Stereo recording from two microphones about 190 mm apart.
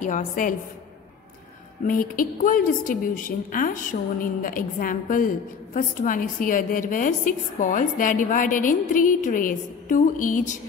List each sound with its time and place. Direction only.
0.0 s a woman's voice: 45° left (ahead or behind)
1.9 s a woman's voice: 45° left (ahead or behind)